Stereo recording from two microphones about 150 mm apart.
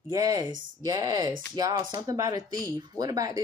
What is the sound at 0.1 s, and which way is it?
Speech, 25° right (ahead or behind).